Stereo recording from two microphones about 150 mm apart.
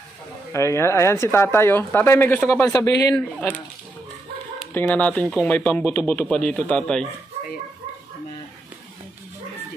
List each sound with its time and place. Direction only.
0.5 s speech: 20° left (ahead or behind)
3.2 s speech: 10° left (ahead or behind)
4.7 s speech: 10° left (ahead or behind)